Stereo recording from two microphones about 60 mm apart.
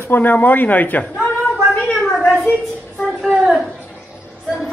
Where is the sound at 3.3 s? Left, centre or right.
Centre.